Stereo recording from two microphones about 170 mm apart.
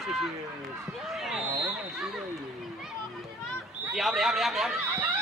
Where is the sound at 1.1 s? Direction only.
Centre (ahead or behind).